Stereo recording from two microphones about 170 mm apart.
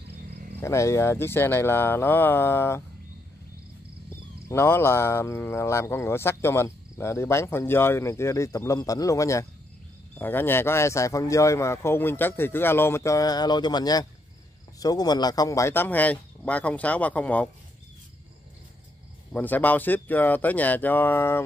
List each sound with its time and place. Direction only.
0.6 s speech: 15° left (ahead or behind)
4.5 s speech: 15° left (ahead or behind)
19.3 s speech: 10° left (ahead or behind)